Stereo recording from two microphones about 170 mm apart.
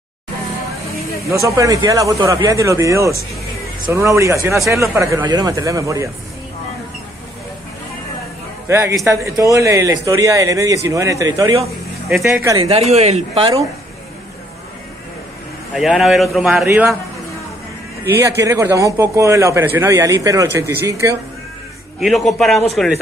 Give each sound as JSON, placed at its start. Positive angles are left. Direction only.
{"t": 1.3, "sound": "a man's voice", "side_deg": -15}
{"t": 8.6, "sound": "a man's voice", "side_deg": -15}
{"t": 12.6, "sound": "speech", "side_deg": -40}
{"t": 15.7, "sound": "a man's voice", "side_deg": 0}
{"t": 18.0, "sound": "speech", "side_deg": -15}
{"t": 22.0, "sound": "a man's voice", "side_deg": 0}